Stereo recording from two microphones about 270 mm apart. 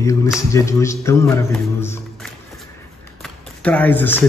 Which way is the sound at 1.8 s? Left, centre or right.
Centre.